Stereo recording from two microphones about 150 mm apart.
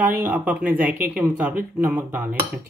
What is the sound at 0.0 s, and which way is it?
Speech, 10° right (ahead or behind).